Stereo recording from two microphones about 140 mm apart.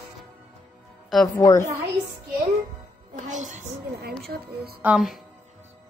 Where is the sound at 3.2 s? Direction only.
65° right (ahead or behind).